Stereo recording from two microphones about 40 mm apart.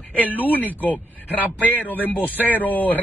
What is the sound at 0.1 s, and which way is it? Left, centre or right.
Speech, left.